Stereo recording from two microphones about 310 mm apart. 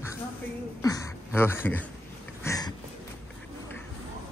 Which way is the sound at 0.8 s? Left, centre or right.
Centre.